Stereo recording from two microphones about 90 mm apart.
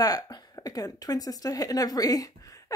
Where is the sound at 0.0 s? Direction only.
45° left (ahead or behind).